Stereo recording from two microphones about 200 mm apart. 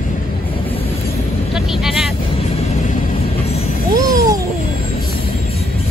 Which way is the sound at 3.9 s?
15° right (ahead or behind).